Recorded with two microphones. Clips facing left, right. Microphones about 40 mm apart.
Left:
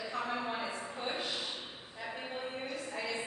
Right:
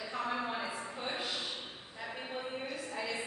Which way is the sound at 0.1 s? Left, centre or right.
Centre.